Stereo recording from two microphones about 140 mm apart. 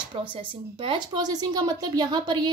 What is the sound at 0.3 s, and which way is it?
A woman's voice, 35° right (ahead or behind).